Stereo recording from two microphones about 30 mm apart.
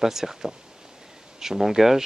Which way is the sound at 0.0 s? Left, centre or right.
Centre.